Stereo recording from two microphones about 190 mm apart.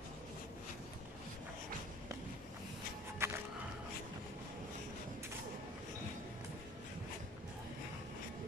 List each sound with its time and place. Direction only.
3.2 s music: 15° right (ahead or behind)